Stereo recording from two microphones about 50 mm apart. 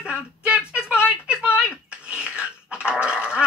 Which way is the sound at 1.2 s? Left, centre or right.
Right.